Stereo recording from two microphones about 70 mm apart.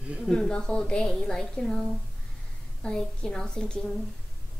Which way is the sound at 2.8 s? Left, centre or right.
Centre.